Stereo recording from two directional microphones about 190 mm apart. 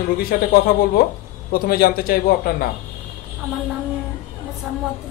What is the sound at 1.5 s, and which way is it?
Speech, 50° left (ahead or behind).